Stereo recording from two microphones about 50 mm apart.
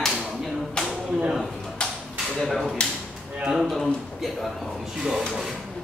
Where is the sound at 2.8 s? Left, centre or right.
Left.